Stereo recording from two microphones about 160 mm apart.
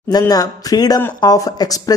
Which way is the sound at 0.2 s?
20° left (ahead or behind).